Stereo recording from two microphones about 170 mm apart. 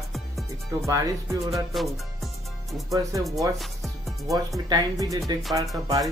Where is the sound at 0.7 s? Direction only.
20° right (ahead or behind).